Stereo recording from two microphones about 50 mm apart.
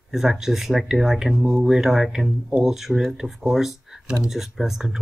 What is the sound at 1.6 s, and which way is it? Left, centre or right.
Speech, centre.